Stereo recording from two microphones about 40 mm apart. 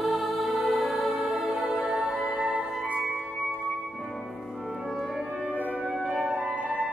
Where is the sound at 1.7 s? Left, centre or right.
Right.